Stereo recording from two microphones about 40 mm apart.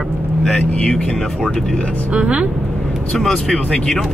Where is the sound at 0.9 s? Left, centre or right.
Centre.